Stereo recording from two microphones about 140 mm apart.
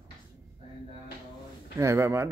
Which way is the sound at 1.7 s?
20° right (ahead or behind).